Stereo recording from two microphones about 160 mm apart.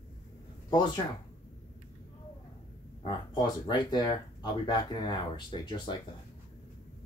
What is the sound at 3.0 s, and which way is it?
Speech, 25° left (ahead or behind).